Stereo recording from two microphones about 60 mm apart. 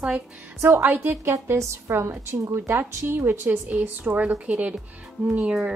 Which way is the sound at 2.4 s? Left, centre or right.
Right.